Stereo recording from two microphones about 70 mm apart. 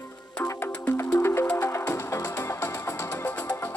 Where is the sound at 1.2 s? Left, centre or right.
Left.